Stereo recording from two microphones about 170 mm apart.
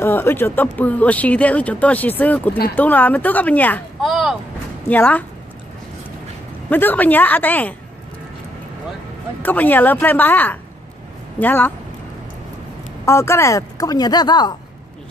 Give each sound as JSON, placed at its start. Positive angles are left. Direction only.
{"t": 0.0, "sound": "speech", "side_deg": 10}
{"t": 4.1, "sound": "speech", "side_deg": 0}
{"t": 4.8, "sound": "speech", "side_deg": 10}
{"t": 6.7, "sound": "speech", "side_deg": 10}
{"t": 9.4, "sound": "speech", "side_deg": 10}
{"t": 13.0, "sound": "speech", "side_deg": 15}